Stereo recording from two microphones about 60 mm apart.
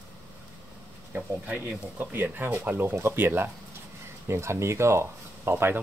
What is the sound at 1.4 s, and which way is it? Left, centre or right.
Speech, right.